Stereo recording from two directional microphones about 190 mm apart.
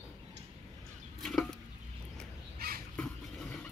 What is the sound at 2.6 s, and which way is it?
Crow, 55° right (ahead or behind).